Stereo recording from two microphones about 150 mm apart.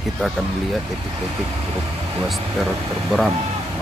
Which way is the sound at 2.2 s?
Centre (ahead or behind).